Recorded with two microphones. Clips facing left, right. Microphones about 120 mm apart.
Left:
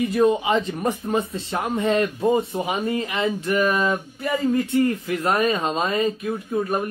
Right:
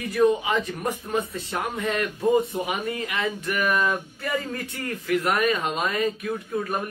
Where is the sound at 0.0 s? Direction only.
25° left (ahead or behind).